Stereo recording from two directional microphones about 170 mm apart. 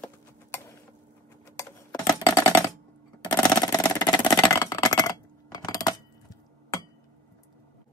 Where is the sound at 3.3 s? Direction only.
25° left (ahead or behind).